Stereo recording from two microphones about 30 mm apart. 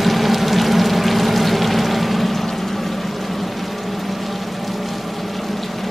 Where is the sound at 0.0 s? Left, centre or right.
Centre.